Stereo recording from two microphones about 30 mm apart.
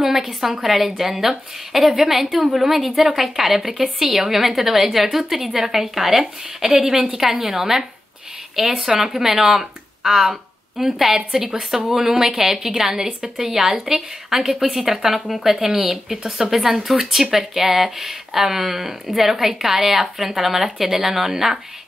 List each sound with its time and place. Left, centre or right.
0.3 s a woman's voice: centre